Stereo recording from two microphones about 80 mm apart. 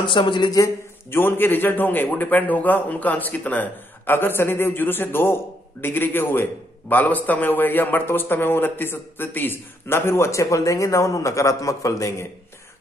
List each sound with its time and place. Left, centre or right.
0.0 s speech: left
1.1 s a man's voice: left